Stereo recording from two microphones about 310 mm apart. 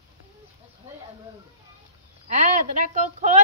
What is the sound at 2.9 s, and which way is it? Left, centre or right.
Speech, right.